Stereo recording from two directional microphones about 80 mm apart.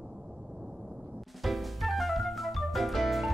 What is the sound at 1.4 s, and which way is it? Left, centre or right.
Music, centre.